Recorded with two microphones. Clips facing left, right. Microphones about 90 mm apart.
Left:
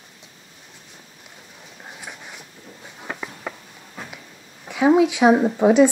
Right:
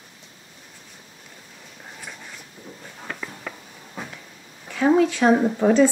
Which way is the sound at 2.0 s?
15° left (ahead or behind).